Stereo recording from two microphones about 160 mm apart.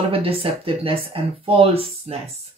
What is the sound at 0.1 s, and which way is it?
Speech, 35° right (ahead or behind).